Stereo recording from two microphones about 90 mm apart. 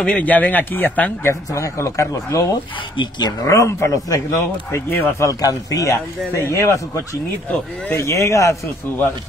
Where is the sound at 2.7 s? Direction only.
60° left (ahead or behind).